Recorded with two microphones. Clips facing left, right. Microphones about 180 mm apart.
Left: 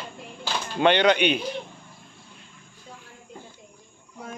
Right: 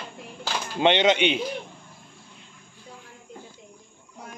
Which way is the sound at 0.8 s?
25° right (ahead or behind).